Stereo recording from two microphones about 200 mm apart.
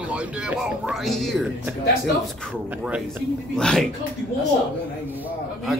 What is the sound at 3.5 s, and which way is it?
Speech, 5° left (ahead or behind).